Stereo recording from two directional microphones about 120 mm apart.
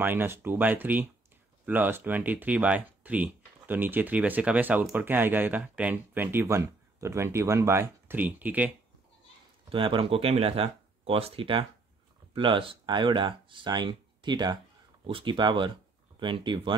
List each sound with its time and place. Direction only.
0.0 s speech: 15° right (ahead or behind)
9.7 s speech: 45° right (ahead or behind)